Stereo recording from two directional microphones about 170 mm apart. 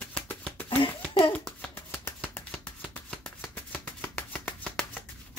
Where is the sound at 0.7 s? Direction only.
30° left (ahead or behind).